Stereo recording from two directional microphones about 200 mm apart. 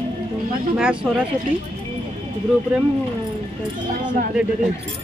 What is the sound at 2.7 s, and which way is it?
Speech, 5° right (ahead or behind).